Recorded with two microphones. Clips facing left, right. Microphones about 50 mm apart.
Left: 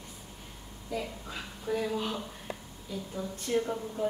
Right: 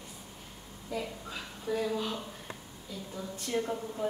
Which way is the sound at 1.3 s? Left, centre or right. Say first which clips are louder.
Left 1 dB; centre.